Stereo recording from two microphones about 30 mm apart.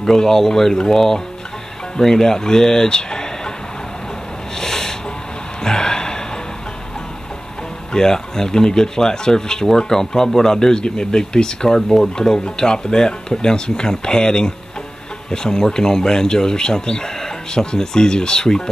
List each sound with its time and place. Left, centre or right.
0.0 s speech: centre
4.6 s a sound: centre
5.6 s gasp: left
7.9 s speech: centre